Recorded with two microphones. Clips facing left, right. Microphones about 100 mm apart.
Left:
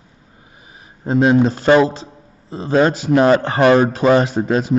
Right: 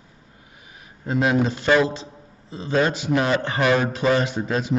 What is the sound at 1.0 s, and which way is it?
A man's voice, 30° left (ahead or behind).